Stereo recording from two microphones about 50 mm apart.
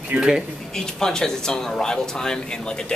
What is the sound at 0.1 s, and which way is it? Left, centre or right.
Speech, centre.